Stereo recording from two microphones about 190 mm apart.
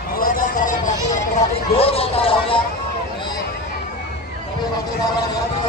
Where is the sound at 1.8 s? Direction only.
30° left (ahead or behind).